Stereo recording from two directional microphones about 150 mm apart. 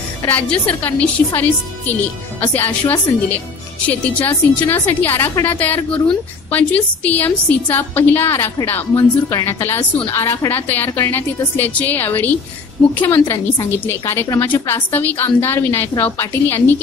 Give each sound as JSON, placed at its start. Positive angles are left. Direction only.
{"t": 0.3, "sound": "a woman's voice", "side_deg": 10}